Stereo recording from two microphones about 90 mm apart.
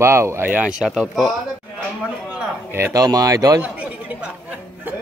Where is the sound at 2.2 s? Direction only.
10° right (ahead or behind).